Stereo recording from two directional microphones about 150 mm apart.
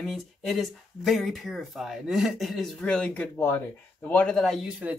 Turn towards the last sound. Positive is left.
turn(degrees=-5)  # may be behind; listen again after turning